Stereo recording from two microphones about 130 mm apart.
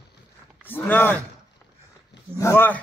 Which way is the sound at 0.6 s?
15° left (ahead or behind).